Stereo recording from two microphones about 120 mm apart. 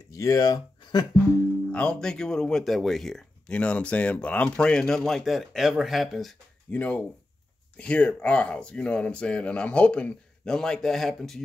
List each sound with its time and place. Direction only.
0.1 s speech: 30° left (ahead or behind)
1.7 s speech: 10° left (ahead or behind)
6.7 s speech: 15° left (ahead or behind)